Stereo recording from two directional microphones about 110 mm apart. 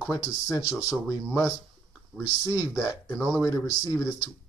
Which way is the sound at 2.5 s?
25° left (ahead or behind).